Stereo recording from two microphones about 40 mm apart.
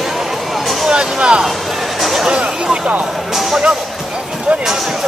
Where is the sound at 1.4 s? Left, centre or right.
Centre.